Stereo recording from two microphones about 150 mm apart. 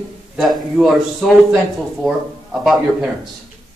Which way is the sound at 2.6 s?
Centre (ahead or behind).